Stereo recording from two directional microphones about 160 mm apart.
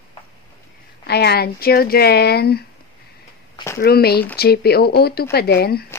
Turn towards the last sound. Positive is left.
turn(degrees=80)